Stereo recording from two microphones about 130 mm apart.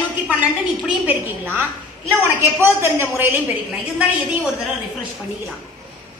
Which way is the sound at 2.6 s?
15° right (ahead or behind).